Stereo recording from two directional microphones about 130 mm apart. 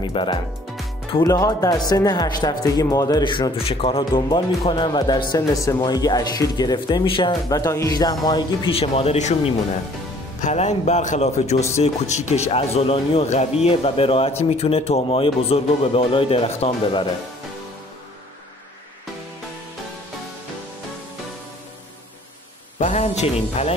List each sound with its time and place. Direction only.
0.0 s speech: 40° left (ahead or behind)
1.2 s speech: 25° left (ahead or behind)
7.4 s speech: 25° left (ahead or behind)
8.7 s speech: 50° left (ahead or behind)
22.8 s speech: 55° left (ahead or behind)